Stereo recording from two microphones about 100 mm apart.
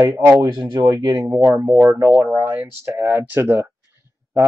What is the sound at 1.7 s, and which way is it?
Speech, 30° right (ahead or behind).